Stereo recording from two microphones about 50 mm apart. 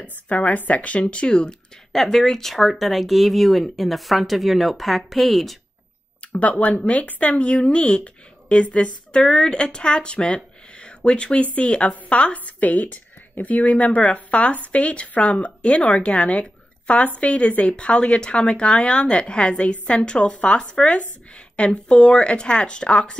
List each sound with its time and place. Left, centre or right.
0.0 s speech: left; by 5.6 s centre
6.2 s a sound: left
6.6 s speech: left